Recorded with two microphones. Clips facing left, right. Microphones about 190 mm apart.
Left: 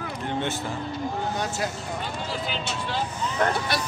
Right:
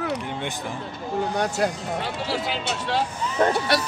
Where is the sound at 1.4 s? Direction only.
65° right (ahead or behind).